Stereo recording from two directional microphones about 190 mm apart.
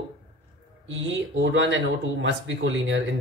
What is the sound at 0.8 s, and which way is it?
Speech, 75° right (ahead or behind).